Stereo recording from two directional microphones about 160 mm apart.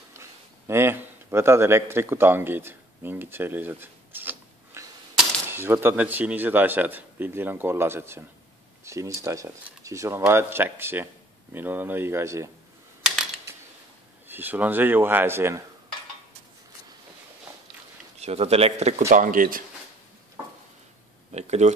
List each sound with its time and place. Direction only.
0.1 s a man's voice: 15° right (ahead or behind)
13.0 s a sound: 5° right (ahead or behind)
14.2 s speech: 10° right (ahead or behind)
18.2 s speech: 40° right (ahead or behind); by 19.6 s 60° right (ahead or behind)
21.3 s speech: 45° right (ahead or behind)